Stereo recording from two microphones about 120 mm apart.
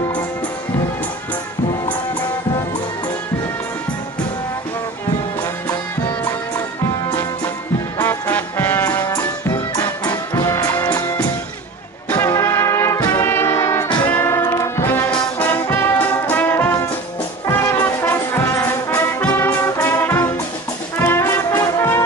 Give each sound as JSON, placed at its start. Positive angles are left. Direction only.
{"t": 8.0, "sound": "music", "side_deg": 15}
{"t": 9.0, "sound": "music", "side_deg": 35}
{"t": 12.1, "sound": "brass instrument", "side_deg": 20}
{"t": 14.0, "sound": "music", "side_deg": 15}
{"t": 15.0, "sound": "brass instrument", "side_deg": 15}
{"t": 21.0, "sound": "music", "side_deg": 20}